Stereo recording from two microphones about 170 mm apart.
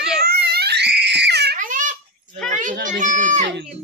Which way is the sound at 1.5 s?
50° right (ahead or behind).